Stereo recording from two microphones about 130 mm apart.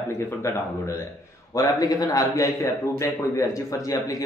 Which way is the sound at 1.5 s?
30° left (ahead or behind).